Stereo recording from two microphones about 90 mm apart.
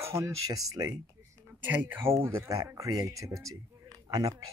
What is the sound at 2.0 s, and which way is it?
Speech, 30° right (ahead or behind).